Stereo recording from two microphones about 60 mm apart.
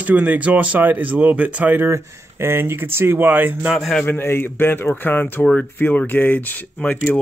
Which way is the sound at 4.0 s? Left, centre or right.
Left.